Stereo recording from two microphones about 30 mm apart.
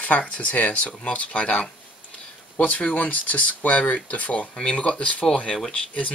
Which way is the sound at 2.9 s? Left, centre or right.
Left.